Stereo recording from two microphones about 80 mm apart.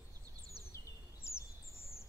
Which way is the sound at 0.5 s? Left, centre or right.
Left.